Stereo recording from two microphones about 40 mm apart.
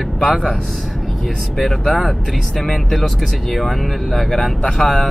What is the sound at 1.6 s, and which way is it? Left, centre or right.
Speech, centre.